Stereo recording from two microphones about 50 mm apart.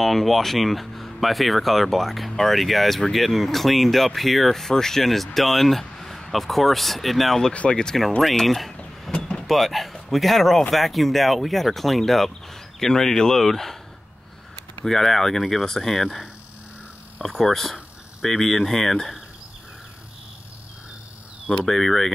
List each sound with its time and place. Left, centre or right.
0.0 s speech: centre
7.5 s speech: left
7.8 s speech: centre
9.1 s vehicle: centre
9.4 s speech: centre
14.9 s speech: centre
17.4 s speech: centre
21.6 s speech: centre